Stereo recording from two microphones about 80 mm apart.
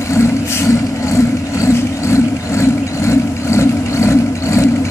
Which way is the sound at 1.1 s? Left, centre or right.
Left.